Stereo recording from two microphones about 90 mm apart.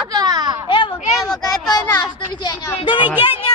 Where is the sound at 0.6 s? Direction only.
65° left (ahead or behind).